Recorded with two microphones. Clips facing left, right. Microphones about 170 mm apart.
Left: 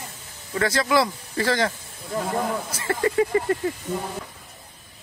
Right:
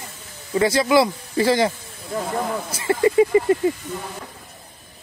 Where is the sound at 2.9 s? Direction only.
15° right (ahead or behind).